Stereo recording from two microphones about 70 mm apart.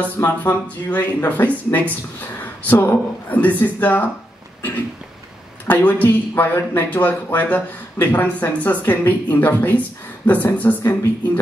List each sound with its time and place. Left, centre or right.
0.2 s speech: left
5.7 s speech: left